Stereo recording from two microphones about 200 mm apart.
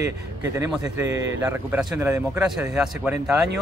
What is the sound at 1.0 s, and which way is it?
A man's voice, 10° right (ahead or behind).